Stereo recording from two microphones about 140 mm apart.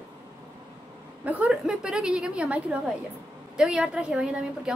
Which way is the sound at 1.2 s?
10° right (ahead or behind).